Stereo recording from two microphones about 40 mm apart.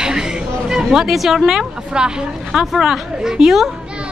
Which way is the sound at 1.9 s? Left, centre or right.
Right.